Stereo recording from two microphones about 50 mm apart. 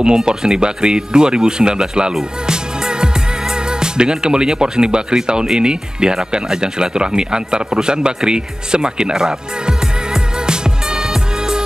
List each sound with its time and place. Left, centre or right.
0.0 s speech: centre